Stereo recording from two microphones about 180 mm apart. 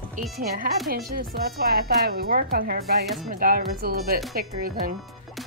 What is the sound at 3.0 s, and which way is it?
Speech, centre (ahead or behind).